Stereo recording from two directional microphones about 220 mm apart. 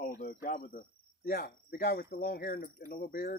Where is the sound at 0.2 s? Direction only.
40° left (ahead or behind).